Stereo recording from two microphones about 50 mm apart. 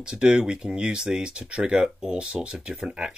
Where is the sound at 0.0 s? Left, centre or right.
Centre.